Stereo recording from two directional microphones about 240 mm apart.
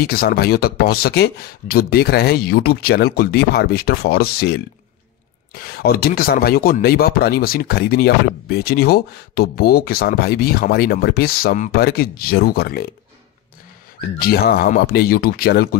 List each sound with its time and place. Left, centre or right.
0.0 s speech: left
14.1 s speech: left